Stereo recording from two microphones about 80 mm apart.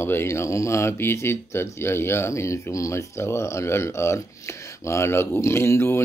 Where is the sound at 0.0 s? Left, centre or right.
Left.